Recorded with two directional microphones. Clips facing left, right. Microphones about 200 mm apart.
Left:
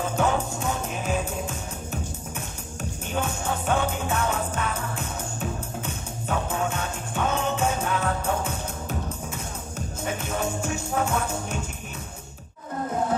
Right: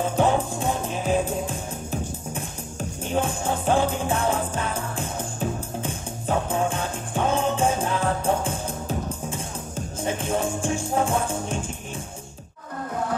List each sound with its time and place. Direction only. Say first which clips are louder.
0.2 s music: right 3 dB; 30° right (ahead or behind)